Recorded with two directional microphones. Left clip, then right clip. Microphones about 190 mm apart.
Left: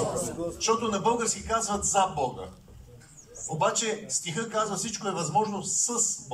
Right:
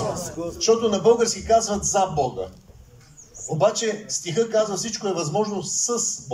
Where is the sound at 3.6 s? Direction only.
25° right (ahead or behind).